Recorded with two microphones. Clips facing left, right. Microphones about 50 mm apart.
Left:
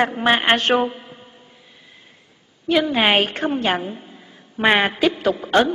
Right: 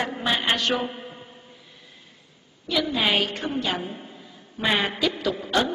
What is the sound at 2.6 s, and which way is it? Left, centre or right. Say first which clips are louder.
A woman's voice: left 6 dB; left.